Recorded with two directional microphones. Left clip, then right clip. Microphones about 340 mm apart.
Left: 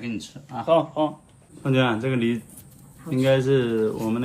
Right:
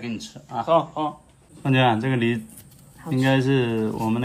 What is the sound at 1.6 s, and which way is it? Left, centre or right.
Speech, right.